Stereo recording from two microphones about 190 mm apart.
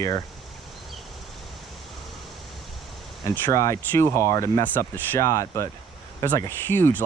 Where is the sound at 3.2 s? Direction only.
15° left (ahead or behind).